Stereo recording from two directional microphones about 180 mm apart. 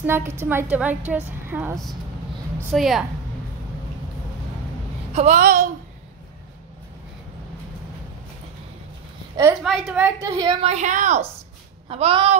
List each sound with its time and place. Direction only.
0.0 s a woman's voice: 10° right (ahead or behind)
5.1 s a woman's voice: 35° right (ahead or behind)
5.4 s speech: 50° right (ahead or behind)
9.6 s a woman's voice: centre (ahead or behind)
10.2 s a woman's voice: 20° right (ahead or behind)
10.6 s a woman's voice: 40° right (ahead or behind)
11.9 s a woman's voice: 30° right (ahead or behind)